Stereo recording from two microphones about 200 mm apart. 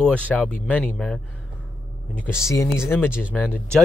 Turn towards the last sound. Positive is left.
turn(degrees=5)  # may be behind; listen again after turning